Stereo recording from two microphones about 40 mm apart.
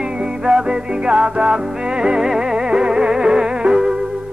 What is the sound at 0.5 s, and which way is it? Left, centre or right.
Music, right.